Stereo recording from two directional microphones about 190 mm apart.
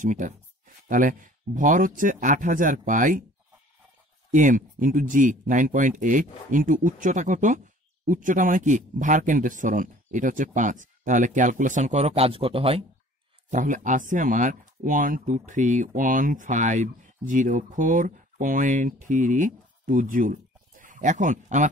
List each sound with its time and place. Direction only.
0.0 s speech: 40° right (ahead or behind)
4.3 s speech: 40° right (ahead or behind)
13.5 s speech: 40° right (ahead or behind)